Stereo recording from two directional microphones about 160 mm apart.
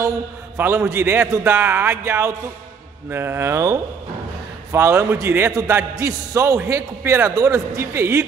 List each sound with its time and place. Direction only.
0.6 s a man's voice: 15° right (ahead or behind)
4.7 s a man's voice: 15° right (ahead or behind)